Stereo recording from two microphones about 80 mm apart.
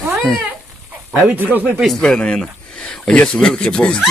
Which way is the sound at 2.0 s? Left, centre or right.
Centre.